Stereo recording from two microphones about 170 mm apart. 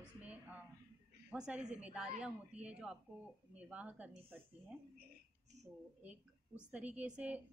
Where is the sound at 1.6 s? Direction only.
40° right (ahead or behind).